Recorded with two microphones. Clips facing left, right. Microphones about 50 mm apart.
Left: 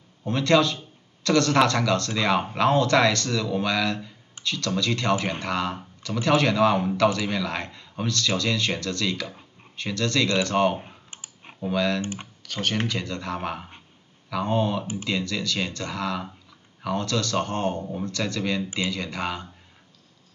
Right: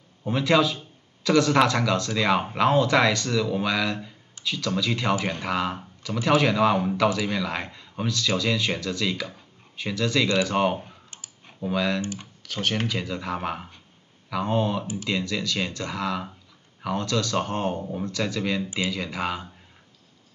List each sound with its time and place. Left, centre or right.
0.2 s a man's voice: centre
10.8 s typing: left
11.7 s a man's voice: centre
12.0 s speech: left
12.4 s a man's voice: centre